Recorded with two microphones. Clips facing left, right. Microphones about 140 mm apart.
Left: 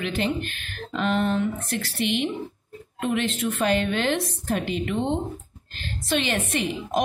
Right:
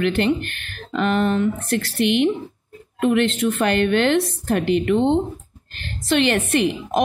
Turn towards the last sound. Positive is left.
turn(degrees=-70)  # may be behind; listen again after turning